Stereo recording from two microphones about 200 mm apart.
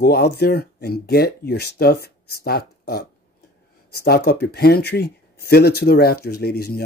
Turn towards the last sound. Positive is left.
turn(degrees=50)  # may be behind; listen again after turning